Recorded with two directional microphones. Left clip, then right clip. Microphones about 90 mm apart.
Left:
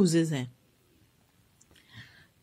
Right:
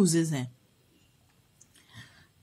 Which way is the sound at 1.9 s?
30° left (ahead or behind).